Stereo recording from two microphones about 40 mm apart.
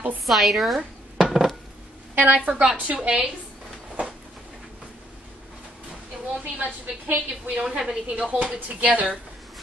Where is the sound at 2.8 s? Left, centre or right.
Right.